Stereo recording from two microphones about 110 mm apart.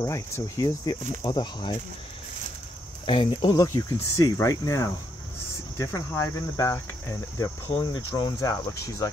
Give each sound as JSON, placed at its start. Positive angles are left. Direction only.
{"t": 0.0, "sound": "speech", "side_deg": 30}
{"t": 3.1, "sound": "speech", "side_deg": 50}
{"t": 3.5, "sound": "cricket", "side_deg": 25}
{"t": 7.8, "sound": "speech", "side_deg": 40}
{"t": 8.4, "sound": "cricket", "side_deg": 30}